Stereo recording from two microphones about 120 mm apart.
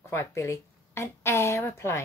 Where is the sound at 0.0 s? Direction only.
25° left (ahead or behind).